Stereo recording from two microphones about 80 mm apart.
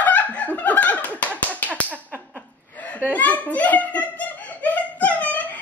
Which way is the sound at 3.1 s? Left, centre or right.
Centre.